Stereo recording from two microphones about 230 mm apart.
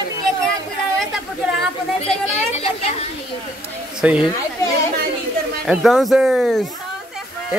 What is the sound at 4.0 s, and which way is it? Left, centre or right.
Speech, centre.